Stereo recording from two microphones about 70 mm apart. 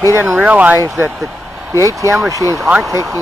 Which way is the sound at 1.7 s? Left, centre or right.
Right.